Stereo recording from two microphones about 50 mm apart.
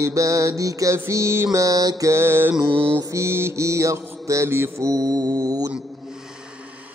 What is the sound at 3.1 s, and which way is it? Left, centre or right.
Mantra, right.